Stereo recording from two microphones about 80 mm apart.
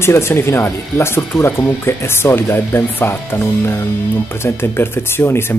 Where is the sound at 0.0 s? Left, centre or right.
Left.